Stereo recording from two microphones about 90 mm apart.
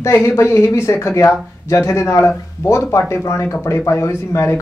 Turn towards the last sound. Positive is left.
turn(degrees=35)  # may be behind; listen again after turning